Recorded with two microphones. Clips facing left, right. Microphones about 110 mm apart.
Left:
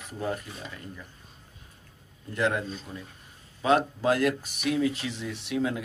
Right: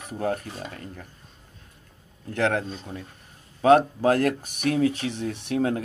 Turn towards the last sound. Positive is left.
turn(degrees=-45)  # may be behind; listen again after turning